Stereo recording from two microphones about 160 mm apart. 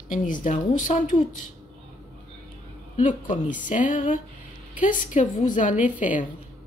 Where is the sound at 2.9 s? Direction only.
55° left (ahead or behind).